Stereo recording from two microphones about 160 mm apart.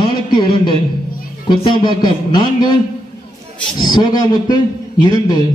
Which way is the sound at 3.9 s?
25° left (ahead or behind).